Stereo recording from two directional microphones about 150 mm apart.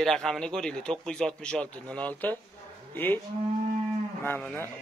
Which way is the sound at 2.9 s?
15° left (ahead or behind).